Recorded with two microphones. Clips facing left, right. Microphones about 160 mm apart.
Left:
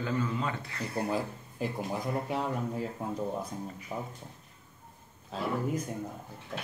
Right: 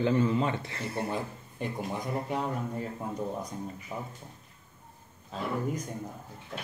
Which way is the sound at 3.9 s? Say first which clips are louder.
Left 2 dB; 10° left (ahead or behind).